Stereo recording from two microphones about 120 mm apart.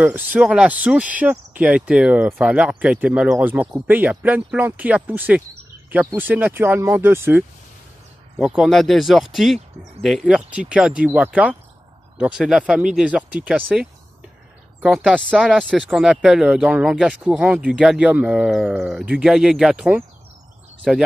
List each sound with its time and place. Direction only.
0.0 s speech: 10° right (ahead or behind)
8.4 s speech: 5° right (ahead or behind)